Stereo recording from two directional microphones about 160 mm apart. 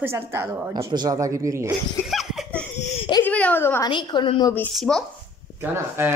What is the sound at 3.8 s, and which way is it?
Speech, 30° left (ahead or behind).